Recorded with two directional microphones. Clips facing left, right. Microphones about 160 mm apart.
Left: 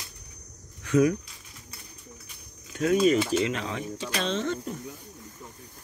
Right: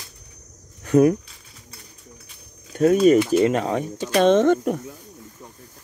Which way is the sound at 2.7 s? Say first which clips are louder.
Right 7 dB; 45° right (ahead or behind).